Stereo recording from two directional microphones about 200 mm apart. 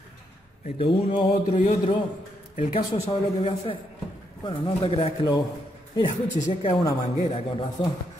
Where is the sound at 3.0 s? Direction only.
25° left (ahead or behind).